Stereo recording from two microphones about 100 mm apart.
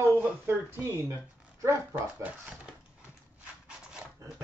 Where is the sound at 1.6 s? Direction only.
30° right (ahead or behind).